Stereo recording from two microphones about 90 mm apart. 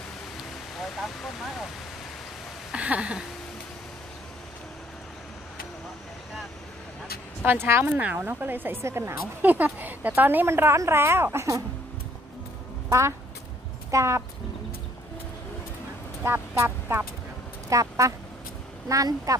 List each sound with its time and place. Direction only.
0.4 s a sound: centre (ahead or behind)
2.7 s a sound: 15° right (ahead or behind)
7.6 s a woman's voice: 25° right (ahead or behind)
7.9 s a woman's voice: 15° right (ahead or behind)
9.5 s a woman's voice: 20° right (ahead or behind)
13.8 s a woman's voice: 35° right (ahead or behind)
16.3 s a woman's voice: 25° right (ahead or behind)
17.6 s a sound: 35° right (ahead or behind)
18.9 s speech: 40° right (ahead or behind)